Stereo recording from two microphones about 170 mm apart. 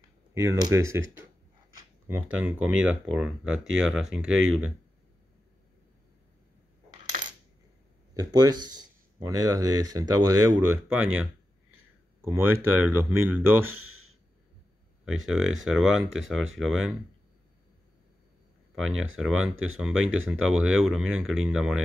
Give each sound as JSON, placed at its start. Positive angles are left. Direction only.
{"t": 0.3, "sound": "speech", "side_deg": -20}
{"t": 7.2, "sound": "coin", "side_deg": -50}
{"t": 8.1, "sound": "speech", "side_deg": -20}
{"t": 10.9, "sound": "speech", "side_deg": -10}
{"t": 15.0, "sound": "speech", "side_deg": 0}
{"t": 18.8, "sound": "speech", "side_deg": 0}